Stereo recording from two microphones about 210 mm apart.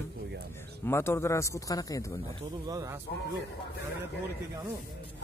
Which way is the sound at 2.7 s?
15° right (ahead or behind).